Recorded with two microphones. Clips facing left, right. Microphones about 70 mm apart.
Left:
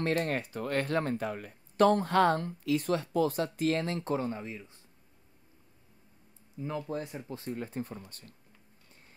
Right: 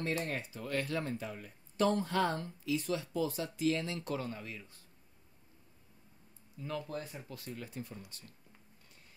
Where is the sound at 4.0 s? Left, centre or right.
Left.